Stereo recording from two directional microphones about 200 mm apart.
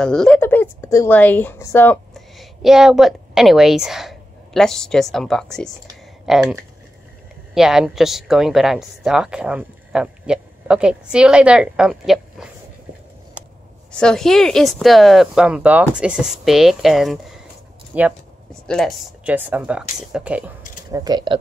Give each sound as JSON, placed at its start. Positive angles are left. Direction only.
{"t": 0.0, "sound": "a woman's voice", "side_deg": 5}
{"t": 13.9, "sound": "speech", "side_deg": 5}
{"t": 18.5, "sound": "speech", "side_deg": 0}
{"t": 20.9, "sound": "speech", "side_deg": -20}